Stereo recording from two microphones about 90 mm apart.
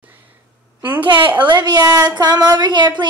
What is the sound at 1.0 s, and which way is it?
A woman's voice, 65° right (ahead or behind).